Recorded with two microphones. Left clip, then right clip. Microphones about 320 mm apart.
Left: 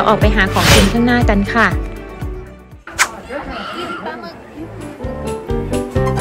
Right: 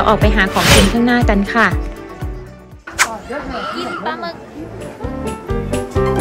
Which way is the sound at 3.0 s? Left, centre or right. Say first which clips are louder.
Even; centre.